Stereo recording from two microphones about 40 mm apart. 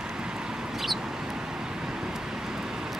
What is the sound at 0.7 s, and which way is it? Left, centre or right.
Vehicle, centre.